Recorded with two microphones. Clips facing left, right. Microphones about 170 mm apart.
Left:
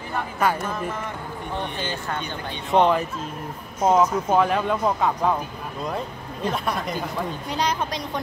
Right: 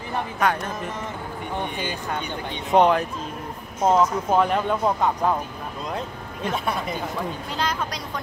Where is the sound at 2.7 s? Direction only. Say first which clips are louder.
Right 1 dB; 10° right (ahead or behind).